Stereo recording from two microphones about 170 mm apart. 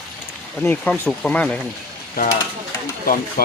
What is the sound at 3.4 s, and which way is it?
Speech, 60° left (ahead or behind).